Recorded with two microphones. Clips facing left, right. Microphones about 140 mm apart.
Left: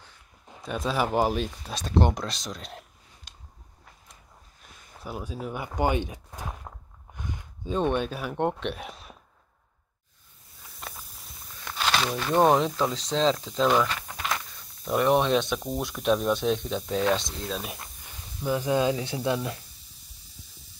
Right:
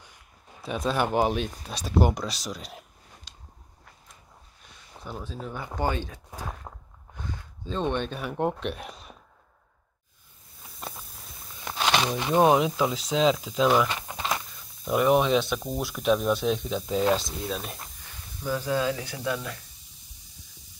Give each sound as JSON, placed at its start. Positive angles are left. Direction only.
{"t": 0.0, "sound": "a sound", "side_deg": -15}
{"t": 0.7, "sound": "speech", "side_deg": 0}
{"t": 3.3, "sound": "a sound", "side_deg": 50}
{"t": 5.0, "sound": "speech", "side_deg": 10}
{"t": 6.7, "sound": "snort", "side_deg": -5}
{"t": 7.2, "sound": "speech", "side_deg": 15}
{"t": 11.6, "sound": "speech", "side_deg": -20}
{"t": 13.8, "sound": "a sound", "side_deg": -20}
{"t": 14.9, "sound": "speech", "side_deg": -5}
{"t": 18.4, "sound": "speech", "side_deg": 15}